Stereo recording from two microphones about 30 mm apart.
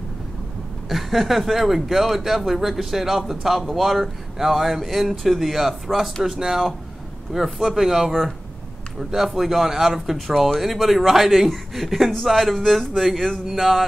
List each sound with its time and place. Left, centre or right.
0.8 s speech: centre
7.6 s speech: centre
9.1 s speech: centre
10.1 s speech: centre